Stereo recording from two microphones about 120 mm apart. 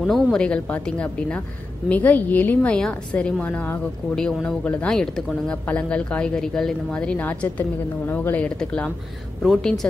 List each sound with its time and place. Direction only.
0.0 s speech: 5° left (ahead or behind)
4.1 s a woman's voice: 5° left (ahead or behind)